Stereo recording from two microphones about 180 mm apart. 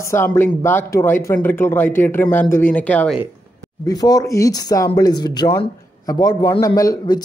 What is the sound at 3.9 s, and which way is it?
Speech, 20° left (ahead or behind).